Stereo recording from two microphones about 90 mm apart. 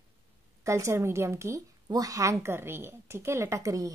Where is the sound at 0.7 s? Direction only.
35° right (ahead or behind).